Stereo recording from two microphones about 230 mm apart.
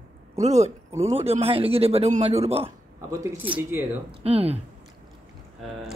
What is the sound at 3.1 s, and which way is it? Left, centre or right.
Speech, centre.